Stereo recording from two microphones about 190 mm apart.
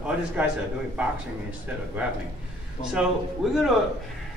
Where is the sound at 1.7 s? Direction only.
10° right (ahead or behind).